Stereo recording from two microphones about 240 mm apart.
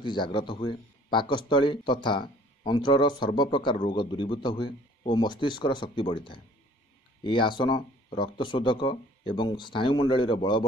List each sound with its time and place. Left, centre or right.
0.0 s speech: centre